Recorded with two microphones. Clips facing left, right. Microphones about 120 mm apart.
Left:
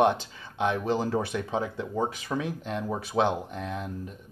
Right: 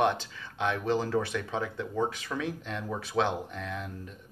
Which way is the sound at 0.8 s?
15° left (ahead or behind).